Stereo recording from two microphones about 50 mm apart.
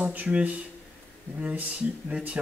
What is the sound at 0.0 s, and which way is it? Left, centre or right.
Speech, right.